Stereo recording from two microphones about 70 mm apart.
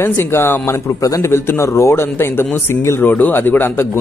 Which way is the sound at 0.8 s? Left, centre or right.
Left.